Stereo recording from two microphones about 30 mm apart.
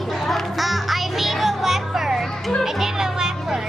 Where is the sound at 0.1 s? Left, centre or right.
Centre.